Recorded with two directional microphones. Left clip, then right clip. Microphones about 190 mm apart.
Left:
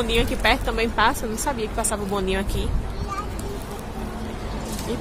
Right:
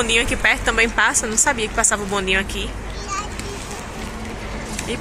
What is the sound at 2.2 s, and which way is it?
Speech, 25° left (ahead or behind).